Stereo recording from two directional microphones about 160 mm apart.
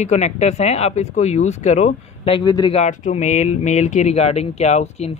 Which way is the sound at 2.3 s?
25° left (ahead or behind).